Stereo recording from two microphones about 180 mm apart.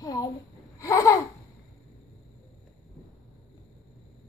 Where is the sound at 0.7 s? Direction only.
20° left (ahead or behind).